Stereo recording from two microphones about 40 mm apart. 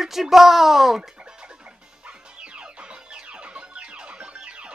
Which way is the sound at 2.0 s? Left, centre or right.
Right.